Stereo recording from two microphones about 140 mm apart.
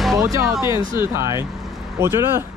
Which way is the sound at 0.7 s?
30° left (ahead or behind).